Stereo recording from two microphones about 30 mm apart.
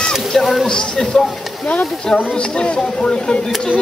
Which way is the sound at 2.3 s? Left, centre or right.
Left.